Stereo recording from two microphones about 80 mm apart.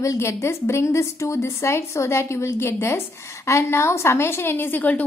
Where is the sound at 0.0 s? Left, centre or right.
Left.